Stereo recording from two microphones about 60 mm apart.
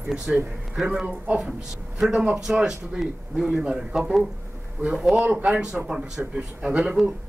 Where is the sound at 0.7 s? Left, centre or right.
Centre.